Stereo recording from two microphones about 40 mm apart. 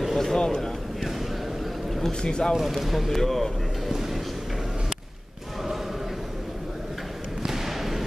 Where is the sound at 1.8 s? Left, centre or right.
Centre.